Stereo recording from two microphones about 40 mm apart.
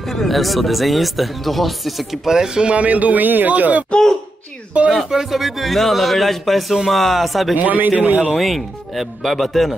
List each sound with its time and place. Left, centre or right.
0.1 s speech: centre
2.2 s speech: centre
2.7 s a man's voice: right
5.1 s speech: centre
7.5 s a man's voice: right
8.4 s speech: centre